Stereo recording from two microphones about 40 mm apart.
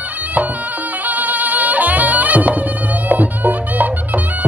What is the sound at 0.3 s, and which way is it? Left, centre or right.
Music, right.